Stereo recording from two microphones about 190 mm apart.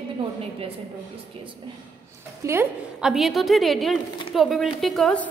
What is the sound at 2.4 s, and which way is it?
A woman's voice, 15° right (ahead or behind).